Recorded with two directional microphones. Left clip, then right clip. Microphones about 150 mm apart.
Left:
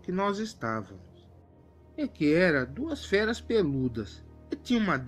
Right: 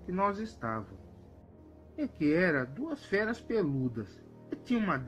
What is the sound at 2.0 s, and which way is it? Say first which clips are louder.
Speech: left 4 dB; 35° left (ahead or behind).